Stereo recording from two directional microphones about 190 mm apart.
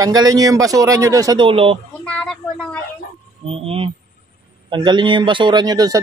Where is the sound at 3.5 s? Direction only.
30° right (ahead or behind).